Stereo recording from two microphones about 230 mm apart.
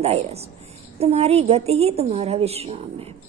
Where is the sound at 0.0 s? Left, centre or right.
Right.